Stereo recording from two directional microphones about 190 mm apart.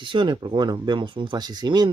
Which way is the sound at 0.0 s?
25° right (ahead or behind).